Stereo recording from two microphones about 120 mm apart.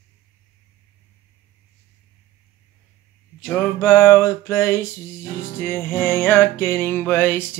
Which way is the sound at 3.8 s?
25° left (ahead or behind).